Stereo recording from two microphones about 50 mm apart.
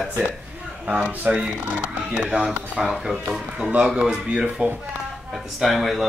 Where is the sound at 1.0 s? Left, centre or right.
Right.